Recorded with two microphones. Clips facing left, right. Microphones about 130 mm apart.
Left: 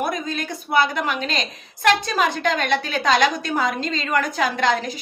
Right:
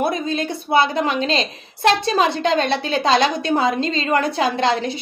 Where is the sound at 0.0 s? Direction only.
30° right (ahead or behind).